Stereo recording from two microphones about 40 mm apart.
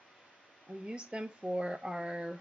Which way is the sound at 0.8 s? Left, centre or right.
Right.